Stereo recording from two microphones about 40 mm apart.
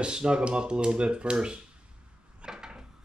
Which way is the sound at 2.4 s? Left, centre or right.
Centre.